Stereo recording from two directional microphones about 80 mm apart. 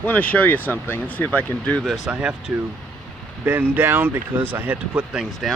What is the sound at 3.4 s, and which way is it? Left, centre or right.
Speech, right.